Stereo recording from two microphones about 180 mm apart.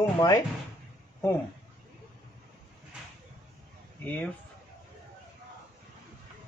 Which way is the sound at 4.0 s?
10° left (ahead or behind).